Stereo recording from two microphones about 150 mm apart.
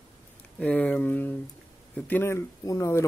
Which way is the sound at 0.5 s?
10° left (ahead or behind).